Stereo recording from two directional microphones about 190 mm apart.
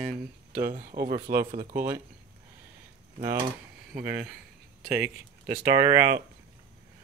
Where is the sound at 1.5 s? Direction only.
40° right (ahead or behind).